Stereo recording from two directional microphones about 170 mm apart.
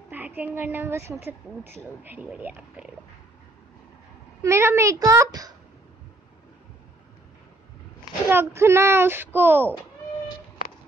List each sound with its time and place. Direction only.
0.1 s a woman's voice: 10° right (ahead or behind)
4.4 s a child's voice: 15° right (ahead or behind)
8.3 s speech: 15° right (ahead or behind)